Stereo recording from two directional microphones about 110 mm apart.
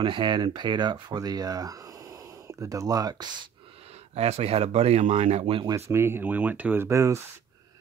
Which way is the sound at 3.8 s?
70° right (ahead or behind).